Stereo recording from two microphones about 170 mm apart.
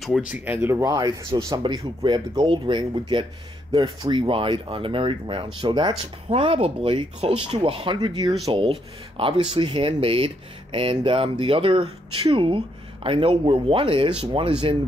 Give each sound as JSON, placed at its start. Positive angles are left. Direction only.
{"t": 0.0, "sound": "speech", "side_deg": -5}